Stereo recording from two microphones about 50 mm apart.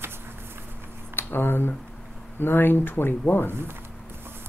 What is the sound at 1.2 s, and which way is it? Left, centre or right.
Speech, left.